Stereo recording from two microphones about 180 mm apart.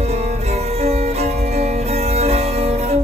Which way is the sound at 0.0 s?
35° right (ahead or behind).